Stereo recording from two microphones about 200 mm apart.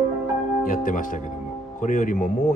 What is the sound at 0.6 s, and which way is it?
Speech, 40° left (ahead or behind).